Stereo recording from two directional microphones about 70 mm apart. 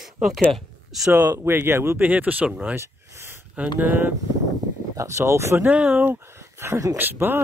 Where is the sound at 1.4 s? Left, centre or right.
Right.